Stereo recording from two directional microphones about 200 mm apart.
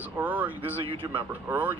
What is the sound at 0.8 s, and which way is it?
Speech, 25° right (ahead or behind).